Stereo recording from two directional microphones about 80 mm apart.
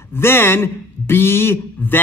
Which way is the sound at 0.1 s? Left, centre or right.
Left.